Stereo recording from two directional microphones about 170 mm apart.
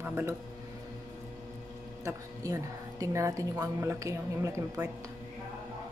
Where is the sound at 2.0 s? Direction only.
20° right (ahead or behind).